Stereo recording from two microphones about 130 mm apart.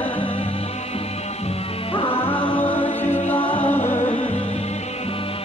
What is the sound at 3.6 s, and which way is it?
Music, 15° left (ahead or behind).